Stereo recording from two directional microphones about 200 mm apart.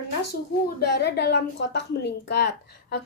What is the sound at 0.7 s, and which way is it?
A woman's voice, 55° left (ahead or behind).